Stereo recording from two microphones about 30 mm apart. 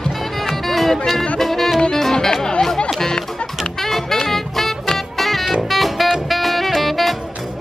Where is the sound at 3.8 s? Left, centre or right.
Centre.